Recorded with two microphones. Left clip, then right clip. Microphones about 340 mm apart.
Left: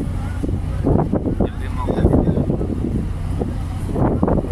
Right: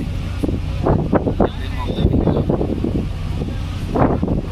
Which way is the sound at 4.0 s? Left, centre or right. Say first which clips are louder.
Right 4 dB; right.